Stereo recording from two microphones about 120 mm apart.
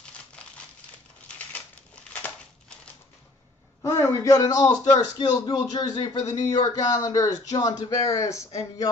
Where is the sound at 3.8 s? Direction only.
25° left (ahead or behind).